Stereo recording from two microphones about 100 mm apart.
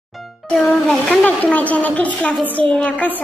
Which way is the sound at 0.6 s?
5° left (ahead or behind).